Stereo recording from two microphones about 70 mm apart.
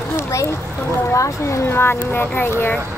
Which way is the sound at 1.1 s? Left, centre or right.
Left.